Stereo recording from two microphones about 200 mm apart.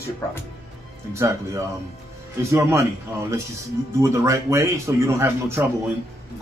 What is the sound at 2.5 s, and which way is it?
A man's voice, 15° right (ahead or behind).